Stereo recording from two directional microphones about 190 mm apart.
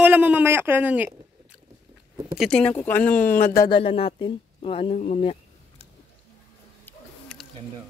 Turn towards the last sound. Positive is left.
turn(degrees=5)  # may be behind; listen again after turning